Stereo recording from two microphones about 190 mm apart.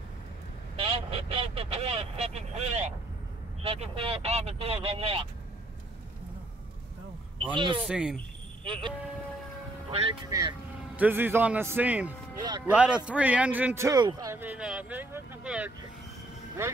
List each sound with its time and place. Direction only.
0.7 s speech: 30° right (ahead or behind)
7.5 s speech: 25° right (ahead or behind)
7.8 s speech: 5° right (ahead or behind)
8.6 s speech: 25° right (ahead or behind); by 15.7 s 5° right (ahead or behind)